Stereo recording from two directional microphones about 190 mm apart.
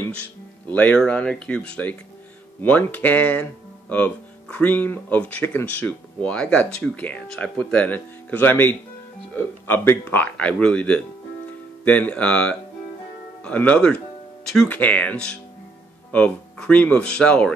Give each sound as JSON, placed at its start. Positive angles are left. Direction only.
{"t": 0.7, "sound": "speech", "side_deg": 10}